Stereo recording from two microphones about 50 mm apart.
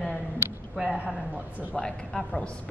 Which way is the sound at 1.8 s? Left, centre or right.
Centre.